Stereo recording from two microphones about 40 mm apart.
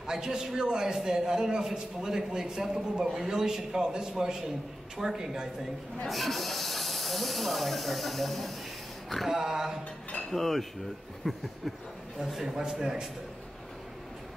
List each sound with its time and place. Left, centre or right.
0.0 s a man's voice: centre
6.0 s speech: centre
9.3 s a man's voice: centre
10.3 s speech: centre
12.4 s a man's voice: centre